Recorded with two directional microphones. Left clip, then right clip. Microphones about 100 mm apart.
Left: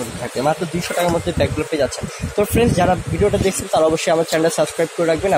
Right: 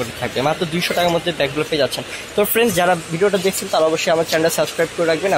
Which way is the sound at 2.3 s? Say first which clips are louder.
Even; 5° right (ahead or behind).